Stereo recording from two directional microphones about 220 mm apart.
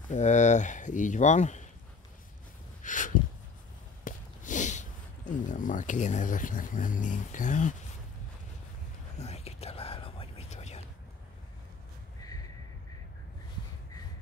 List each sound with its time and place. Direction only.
0.1 s speech: 35° left (ahead or behind)
2.8 s a sound: 35° left (ahead or behind)
4.0 s speech: 35° left (ahead or behind)
9.2 s whispering: 30° left (ahead or behind)